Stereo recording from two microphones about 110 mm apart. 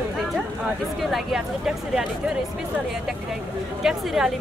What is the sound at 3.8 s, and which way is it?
Speech, 5° right (ahead or behind).